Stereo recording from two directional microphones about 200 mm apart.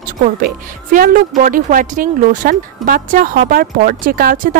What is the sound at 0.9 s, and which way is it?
Speech, 45° right (ahead or behind).